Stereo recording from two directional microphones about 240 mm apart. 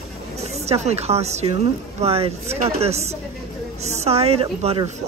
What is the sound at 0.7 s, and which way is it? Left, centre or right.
Speech, right.